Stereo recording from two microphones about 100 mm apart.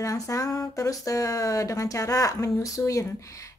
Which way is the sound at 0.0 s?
35° left (ahead or behind).